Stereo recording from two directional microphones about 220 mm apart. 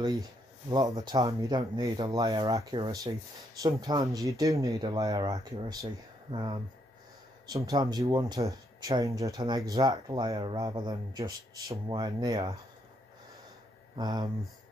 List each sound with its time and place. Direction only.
0.0 s speech: 20° right (ahead or behind)
13.9 s speech: 20° right (ahead or behind)